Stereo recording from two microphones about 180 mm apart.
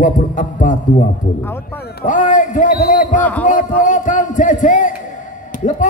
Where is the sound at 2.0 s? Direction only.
45° left (ahead or behind).